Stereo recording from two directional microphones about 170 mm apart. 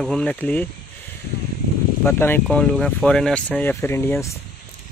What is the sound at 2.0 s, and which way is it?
Speech, 15° left (ahead or behind).